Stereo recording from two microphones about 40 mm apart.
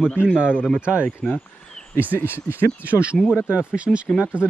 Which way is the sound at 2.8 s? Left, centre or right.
Right.